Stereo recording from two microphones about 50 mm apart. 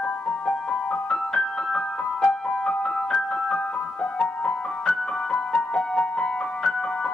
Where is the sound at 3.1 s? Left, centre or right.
Left.